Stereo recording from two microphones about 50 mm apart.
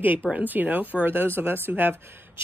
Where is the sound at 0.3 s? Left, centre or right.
Right.